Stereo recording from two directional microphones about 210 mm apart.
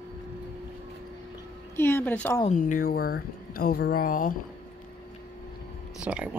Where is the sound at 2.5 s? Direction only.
40° left (ahead or behind).